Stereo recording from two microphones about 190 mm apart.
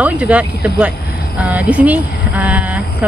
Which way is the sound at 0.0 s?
5° right (ahead or behind).